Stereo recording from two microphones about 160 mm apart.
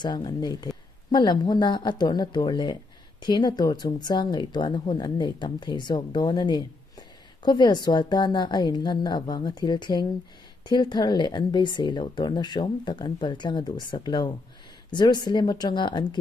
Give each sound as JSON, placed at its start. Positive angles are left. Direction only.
{"t": 0.0, "sound": "speech", "side_deg": 25}